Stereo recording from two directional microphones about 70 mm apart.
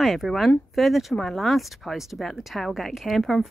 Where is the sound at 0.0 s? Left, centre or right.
Centre.